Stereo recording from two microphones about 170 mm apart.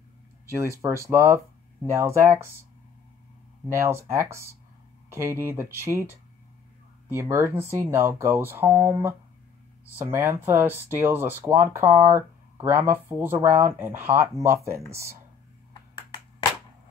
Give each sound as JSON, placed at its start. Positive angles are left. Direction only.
{"t": 0.6, "sound": "speech", "side_deg": -15}
{"t": 3.7, "sound": "speech", "side_deg": -15}
{"t": 10.1, "sound": "speech", "side_deg": -15}